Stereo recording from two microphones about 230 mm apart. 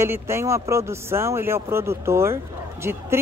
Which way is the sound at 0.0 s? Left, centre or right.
Centre.